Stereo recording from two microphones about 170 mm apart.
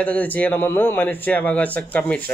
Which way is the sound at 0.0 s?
10° left (ahead or behind).